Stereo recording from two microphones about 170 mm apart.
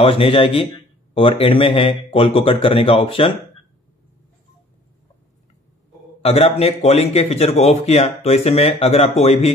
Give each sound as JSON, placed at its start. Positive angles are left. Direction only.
{"t": 0.0, "sound": "speech", "side_deg": 35}
{"t": 6.2, "sound": "speech", "side_deg": 35}